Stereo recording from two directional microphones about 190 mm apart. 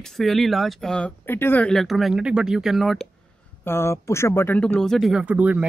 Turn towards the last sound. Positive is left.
turn(degrees=-10)  # may be behind; listen again after turning